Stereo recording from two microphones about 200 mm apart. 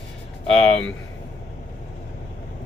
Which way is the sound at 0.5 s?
5° left (ahead or behind).